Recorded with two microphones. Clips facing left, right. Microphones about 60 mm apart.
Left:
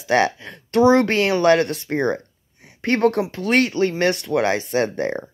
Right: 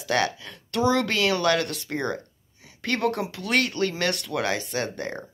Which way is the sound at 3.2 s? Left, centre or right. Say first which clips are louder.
Left 6 dB; left.